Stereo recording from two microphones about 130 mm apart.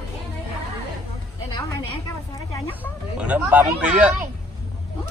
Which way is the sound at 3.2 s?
10° right (ahead or behind).